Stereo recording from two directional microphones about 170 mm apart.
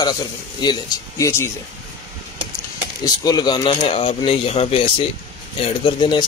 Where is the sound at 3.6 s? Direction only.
35° left (ahead or behind).